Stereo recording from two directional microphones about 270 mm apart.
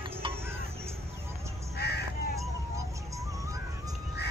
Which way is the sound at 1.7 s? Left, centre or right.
Left.